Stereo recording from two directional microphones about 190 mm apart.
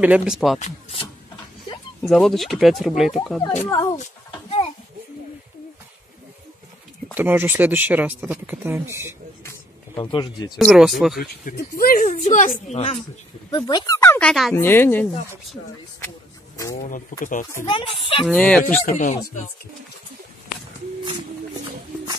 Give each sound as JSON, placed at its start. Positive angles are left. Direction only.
{"t": 0.0, "sound": "speech", "side_deg": -5}
{"t": 0.6, "sound": "speech", "side_deg": 35}
{"t": 2.0, "sound": "speech", "side_deg": 0}
{"t": 3.7, "sound": "a woman's voice", "side_deg": 20}
{"t": 4.0, "sound": "a sound", "side_deg": 35}
{"t": 7.2, "sound": "speech", "side_deg": -10}
{"t": 9.4, "sound": "a sound", "side_deg": 15}
{"t": 10.6, "sound": "speech", "side_deg": 0}
{"t": 11.1, "sound": "a woman's voice", "side_deg": 50}
{"t": 17.2, "sound": "speech", "side_deg": 45}
{"t": 17.6, "sound": "speech", "side_deg": 25}
{"t": 18.2, "sound": "speech", "side_deg": 0}
{"t": 18.9, "sound": "speech", "side_deg": 40}